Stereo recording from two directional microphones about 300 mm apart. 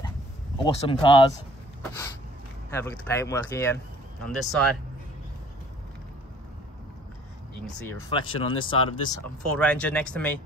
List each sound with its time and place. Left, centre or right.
0.7 s speech: centre
2.7 s speech: centre
8.1 s speech: centre
9.6 s speech: centre